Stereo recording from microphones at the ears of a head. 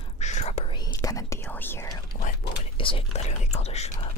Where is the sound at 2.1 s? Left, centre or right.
Left.